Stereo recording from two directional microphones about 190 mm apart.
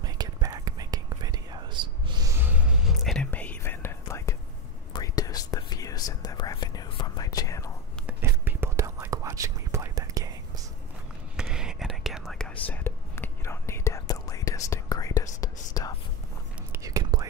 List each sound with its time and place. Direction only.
0.0 s whispering: 20° right (ahead or behind); by 7.7 s 15° left (ahead or behind)
8.1 s whispering: 10° right (ahead or behind)
11.3 s whispering: 5° right (ahead or behind); by 15.9 s 20° left (ahead or behind)
16.7 s whispering: 20° right (ahead or behind)